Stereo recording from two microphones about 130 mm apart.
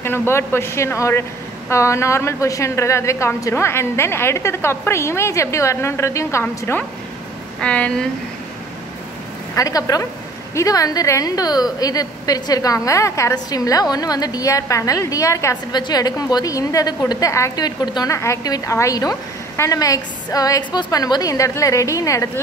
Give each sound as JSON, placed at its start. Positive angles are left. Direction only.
{"t": 0.0, "sound": "a woman's voice", "side_deg": 20}
{"t": 9.6, "sound": "a woman's voice", "side_deg": 25}